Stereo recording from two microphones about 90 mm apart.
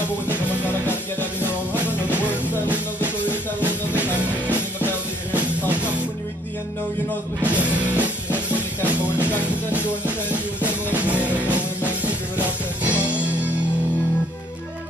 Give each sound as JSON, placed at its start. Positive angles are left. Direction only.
{"t": 1.8, "sound": "music", "side_deg": -15}
{"t": 7.4, "sound": "music", "side_deg": -15}